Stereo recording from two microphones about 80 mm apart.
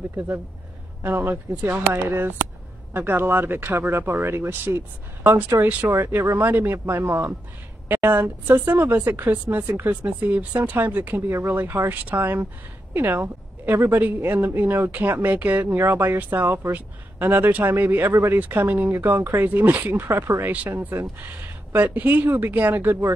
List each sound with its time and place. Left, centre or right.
1.0 s a woman's voice: right
19.8 s speech: right